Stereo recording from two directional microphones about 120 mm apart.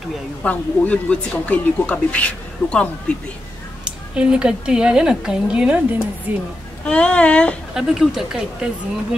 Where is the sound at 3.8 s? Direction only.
10° right (ahead or behind).